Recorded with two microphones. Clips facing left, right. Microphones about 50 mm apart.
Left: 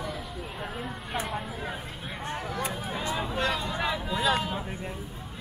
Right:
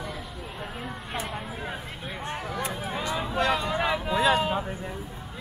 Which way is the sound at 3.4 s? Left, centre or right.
Right.